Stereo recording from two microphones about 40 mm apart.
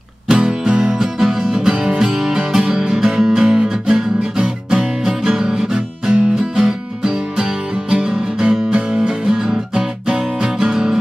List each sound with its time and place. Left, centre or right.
0.3 s music: right